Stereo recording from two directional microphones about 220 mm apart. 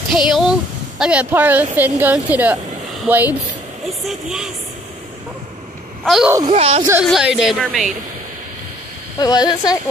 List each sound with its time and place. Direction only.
0.3 s a woman's voice: centre (ahead or behind)
6.0 s a woman's voice: centre (ahead or behind)
6.4 s speech: 25° right (ahead or behind)
7.1 s a woman's voice: centre (ahead or behind)
9.2 s speech: 20° left (ahead or behind)